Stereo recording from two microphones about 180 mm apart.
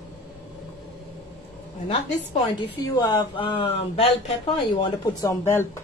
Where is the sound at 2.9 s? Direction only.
25° left (ahead or behind).